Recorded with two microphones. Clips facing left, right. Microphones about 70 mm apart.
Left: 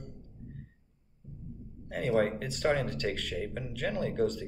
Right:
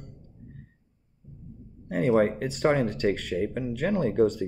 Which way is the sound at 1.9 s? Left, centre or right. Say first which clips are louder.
Right 6 dB; right.